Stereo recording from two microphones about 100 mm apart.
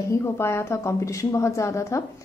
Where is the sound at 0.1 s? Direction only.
25° left (ahead or behind).